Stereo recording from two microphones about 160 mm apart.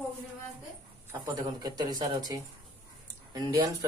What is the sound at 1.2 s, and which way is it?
Speech, 25° right (ahead or behind).